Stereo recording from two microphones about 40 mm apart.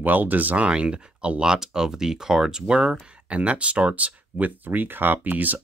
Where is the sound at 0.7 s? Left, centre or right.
Right.